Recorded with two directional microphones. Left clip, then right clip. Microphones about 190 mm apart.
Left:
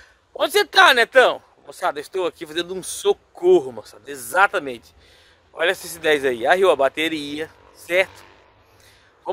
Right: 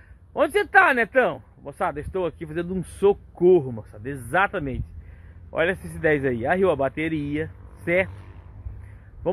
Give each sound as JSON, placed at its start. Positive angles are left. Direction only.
{"t": 0.4, "sound": "speech", "side_deg": 20}
{"t": 1.7, "sound": "speech", "side_deg": 5}
{"t": 2.0, "sound": "speech", "side_deg": 15}
{"t": 5.9, "sound": "speech", "side_deg": 15}